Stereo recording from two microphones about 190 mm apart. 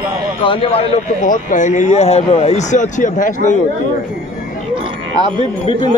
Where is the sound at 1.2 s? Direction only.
40° left (ahead or behind).